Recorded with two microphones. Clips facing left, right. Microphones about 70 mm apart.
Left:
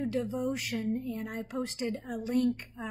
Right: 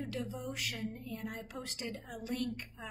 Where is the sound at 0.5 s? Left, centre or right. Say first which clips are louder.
Left 8 dB; left.